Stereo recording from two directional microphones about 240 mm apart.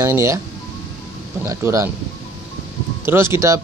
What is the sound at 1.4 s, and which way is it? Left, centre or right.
Speech, centre.